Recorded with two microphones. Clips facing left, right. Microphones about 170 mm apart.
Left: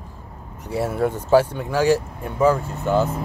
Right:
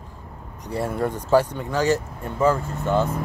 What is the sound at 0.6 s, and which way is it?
Speech, 5° left (ahead or behind).